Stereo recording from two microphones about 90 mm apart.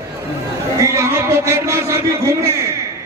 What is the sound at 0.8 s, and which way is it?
A man's voice, 35° right (ahead or behind).